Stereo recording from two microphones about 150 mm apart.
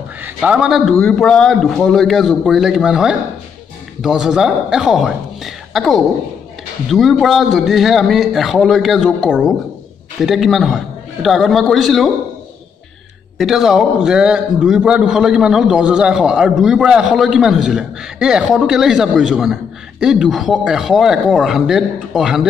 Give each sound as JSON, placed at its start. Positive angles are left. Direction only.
{"t": 0.2, "sound": "a man's voice", "side_deg": -10}
{"t": 13.4, "sound": "a man's voice", "side_deg": -5}